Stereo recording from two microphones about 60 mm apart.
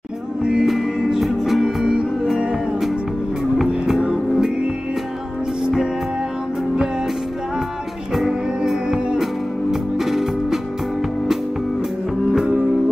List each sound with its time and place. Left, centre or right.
0.4 s music: centre
0.7 s music: centre
8.1 s music: centre